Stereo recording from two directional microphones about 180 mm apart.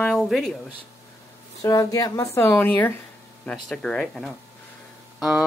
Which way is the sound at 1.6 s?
20° left (ahead or behind).